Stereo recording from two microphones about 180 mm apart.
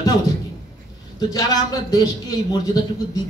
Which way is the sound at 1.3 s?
20° left (ahead or behind).